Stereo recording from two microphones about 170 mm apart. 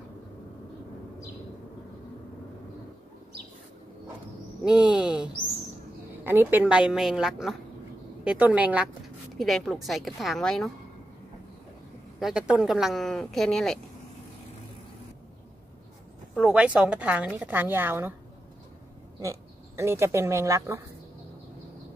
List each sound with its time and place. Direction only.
4.6 s a sound: 5° right (ahead or behind)
6.2 s speech: 15° right (ahead or behind)
12.2 s speech: 5° right (ahead or behind)
16.3 s a woman's voice: 5° right (ahead or behind)
19.2 s speech: 15° right (ahead or behind)